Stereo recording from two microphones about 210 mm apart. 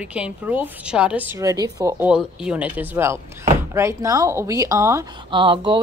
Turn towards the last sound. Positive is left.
turn(degrees=-25)  # may be behind; listen again after turning